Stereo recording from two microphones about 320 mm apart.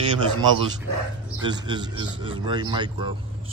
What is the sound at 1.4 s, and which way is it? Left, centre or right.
Speech, centre.